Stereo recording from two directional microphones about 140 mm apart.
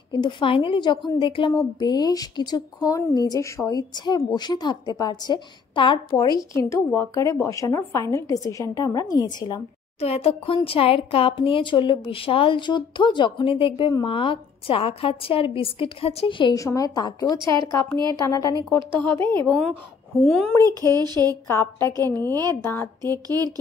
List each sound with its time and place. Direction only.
0.1 s a woman's voice: 35° left (ahead or behind)
9.9 s speech: 45° left (ahead or behind)
16.5 s a woman's voice: 25° left (ahead or behind)
18.8 s a woman's voice: 15° left (ahead or behind)
19.4 s a woman's voice: 5° left (ahead or behind)
20.6 s speech: 25° right (ahead or behind)
21.5 s a woman's voice: 20° left (ahead or behind)
21.8 s speech: 25° right (ahead or behind)